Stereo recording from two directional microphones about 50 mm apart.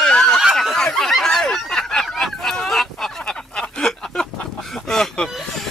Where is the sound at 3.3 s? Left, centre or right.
Centre.